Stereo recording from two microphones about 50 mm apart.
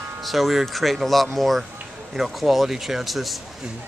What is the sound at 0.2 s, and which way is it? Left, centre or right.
Speech, centre.